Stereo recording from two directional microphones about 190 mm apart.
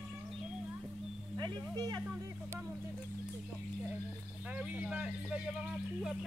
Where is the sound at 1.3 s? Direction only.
20° right (ahead or behind).